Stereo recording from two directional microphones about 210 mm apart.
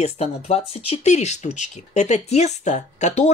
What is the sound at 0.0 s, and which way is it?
Speech, 30° left (ahead or behind).